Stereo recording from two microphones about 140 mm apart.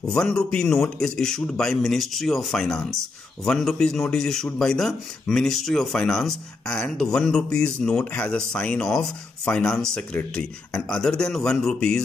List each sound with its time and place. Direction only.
0.1 s a man's voice: 5° left (ahead or behind)